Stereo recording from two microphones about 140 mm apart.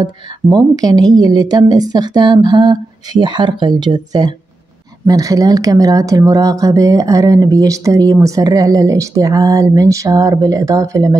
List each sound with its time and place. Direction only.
0.0 s speech: 30° right (ahead or behind)